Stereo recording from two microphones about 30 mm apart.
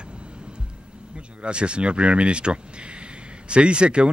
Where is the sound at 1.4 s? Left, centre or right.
Right.